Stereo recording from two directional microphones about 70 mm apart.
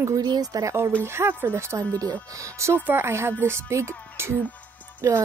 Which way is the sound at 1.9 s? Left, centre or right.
Right.